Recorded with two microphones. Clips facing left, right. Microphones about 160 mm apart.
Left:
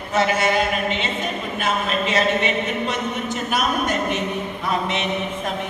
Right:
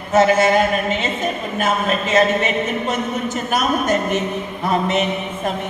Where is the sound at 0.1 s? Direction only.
45° right (ahead or behind).